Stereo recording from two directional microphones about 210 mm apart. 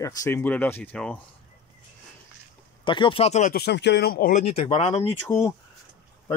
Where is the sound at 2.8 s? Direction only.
20° left (ahead or behind); by 4.4 s 45° left (ahead or behind).